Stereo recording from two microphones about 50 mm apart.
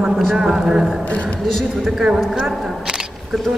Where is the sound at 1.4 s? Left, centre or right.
Centre.